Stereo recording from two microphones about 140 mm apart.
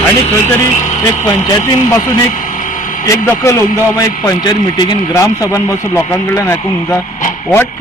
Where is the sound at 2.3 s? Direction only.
70° left (ahead or behind).